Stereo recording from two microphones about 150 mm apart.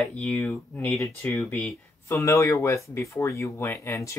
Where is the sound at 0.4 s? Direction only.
15° left (ahead or behind).